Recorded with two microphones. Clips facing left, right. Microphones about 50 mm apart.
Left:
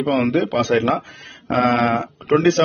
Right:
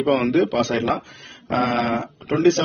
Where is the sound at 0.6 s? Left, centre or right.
Left.